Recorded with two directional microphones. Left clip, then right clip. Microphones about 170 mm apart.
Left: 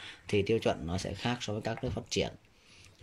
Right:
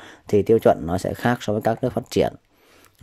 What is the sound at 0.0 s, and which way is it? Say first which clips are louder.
Speech: right 11 dB; 35° right (ahead or behind).